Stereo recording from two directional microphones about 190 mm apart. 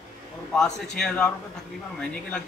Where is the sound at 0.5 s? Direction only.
5° left (ahead or behind).